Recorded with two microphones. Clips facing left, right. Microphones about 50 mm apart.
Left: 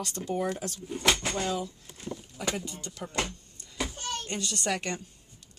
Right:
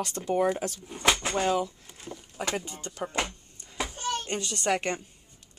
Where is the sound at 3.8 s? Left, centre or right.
Right.